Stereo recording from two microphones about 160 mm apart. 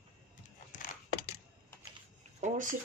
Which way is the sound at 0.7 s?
55° left (ahead or behind).